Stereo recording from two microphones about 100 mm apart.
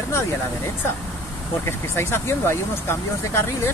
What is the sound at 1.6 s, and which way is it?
Speech, 25° left (ahead or behind).